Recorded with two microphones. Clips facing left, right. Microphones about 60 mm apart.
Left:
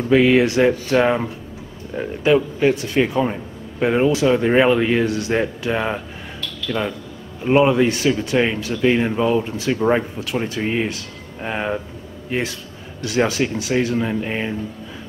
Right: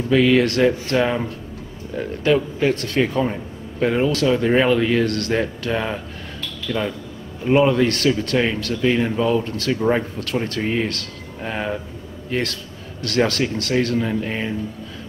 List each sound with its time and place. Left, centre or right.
0.1 s speech: centre